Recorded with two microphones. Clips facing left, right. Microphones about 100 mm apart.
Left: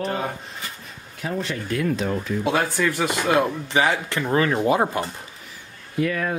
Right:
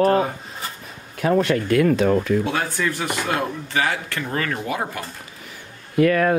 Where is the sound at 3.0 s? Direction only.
20° left (ahead or behind).